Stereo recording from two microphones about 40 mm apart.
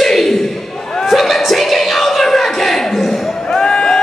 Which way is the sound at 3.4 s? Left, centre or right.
Centre.